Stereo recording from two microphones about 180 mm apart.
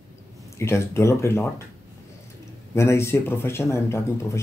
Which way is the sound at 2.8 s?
15° left (ahead or behind).